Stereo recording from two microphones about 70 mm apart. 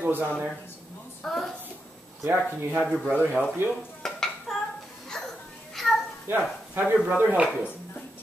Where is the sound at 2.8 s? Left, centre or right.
Centre.